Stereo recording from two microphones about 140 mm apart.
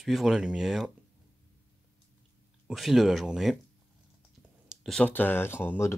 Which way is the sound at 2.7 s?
Centre (ahead or behind).